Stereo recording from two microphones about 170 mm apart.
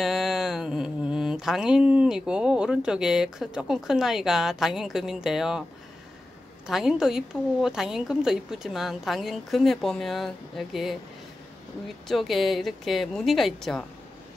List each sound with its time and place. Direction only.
0.0 s speech: centre (ahead or behind)
6.7 s a woman's voice: 5° right (ahead or behind)
12.1 s a woman's voice: centre (ahead or behind)